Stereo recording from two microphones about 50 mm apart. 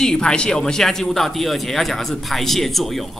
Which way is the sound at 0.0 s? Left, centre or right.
Centre.